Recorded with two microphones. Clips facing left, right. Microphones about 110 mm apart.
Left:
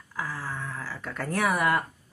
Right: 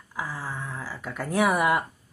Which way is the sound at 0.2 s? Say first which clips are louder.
Right 1 dB; 15° right (ahead or behind).